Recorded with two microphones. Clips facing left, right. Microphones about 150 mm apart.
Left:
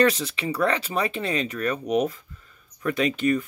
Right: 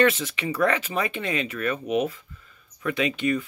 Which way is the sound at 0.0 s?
35° left (ahead or behind).